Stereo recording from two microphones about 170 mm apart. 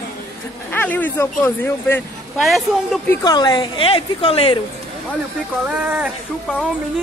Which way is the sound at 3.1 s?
25° left (ahead or behind).